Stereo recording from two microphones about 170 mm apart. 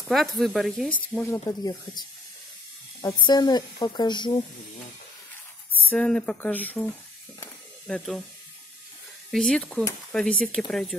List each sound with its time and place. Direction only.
0.1 s speech: centre (ahead or behind)
1.0 s speech: 10° left (ahead or behind)
1.4 s speech: 25° left (ahead or behind)
5.9 s speech: 5° left (ahead or behind)
9.3 s speech: centre (ahead or behind)